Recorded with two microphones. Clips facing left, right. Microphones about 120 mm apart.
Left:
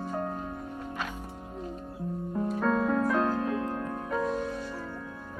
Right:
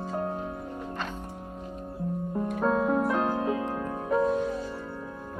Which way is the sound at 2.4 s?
15° right (ahead or behind).